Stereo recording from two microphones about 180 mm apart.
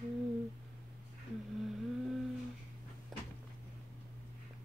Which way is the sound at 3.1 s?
Centre (ahead or behind).